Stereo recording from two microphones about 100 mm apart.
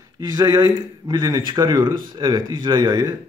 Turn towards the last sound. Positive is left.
turn(degrees=-40)  # may be behind; listen again after turning